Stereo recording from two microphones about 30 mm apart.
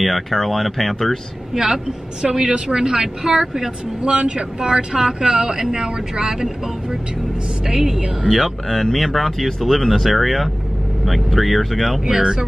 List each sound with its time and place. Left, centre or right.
0.0 s speech: centre
1.5 s a woman's voice: centre
4.0 s a woman's voice: right; by 8.3 s centre
8.3 s speech: centre
12.1 s speech: right